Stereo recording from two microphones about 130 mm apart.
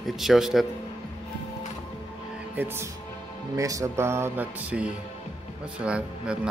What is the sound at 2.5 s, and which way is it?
Speech, 15° right (ahead or behind).